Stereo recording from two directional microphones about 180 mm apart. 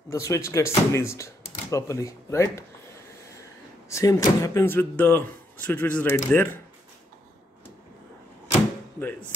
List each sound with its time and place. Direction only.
0.1 s speech: 15° left (ahead or behind)
3.9 s speech: 20° left (ahead or behind)